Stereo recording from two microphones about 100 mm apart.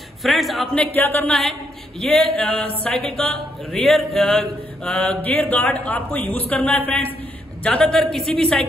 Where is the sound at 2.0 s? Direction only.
5° left (ahead or behind).